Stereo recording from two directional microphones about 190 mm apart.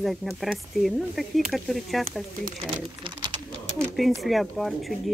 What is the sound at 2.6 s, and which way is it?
Speech, 25° right (ahead or behind).